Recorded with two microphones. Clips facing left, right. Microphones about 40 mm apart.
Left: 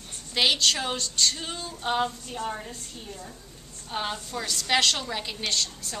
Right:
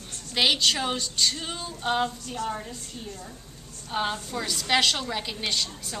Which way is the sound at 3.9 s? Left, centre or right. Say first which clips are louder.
Right 3 dB; centre.